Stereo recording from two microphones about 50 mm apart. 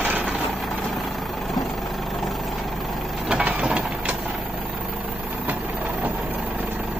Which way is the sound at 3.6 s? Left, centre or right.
Right.